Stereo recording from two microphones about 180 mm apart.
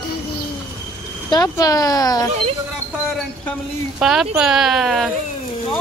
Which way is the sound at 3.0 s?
Centre (ahead or behind).